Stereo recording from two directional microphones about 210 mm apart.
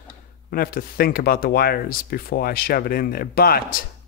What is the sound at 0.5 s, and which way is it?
Speech, 45° left (ahead or behind).